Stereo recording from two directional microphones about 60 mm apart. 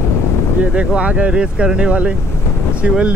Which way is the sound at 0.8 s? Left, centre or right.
Centre.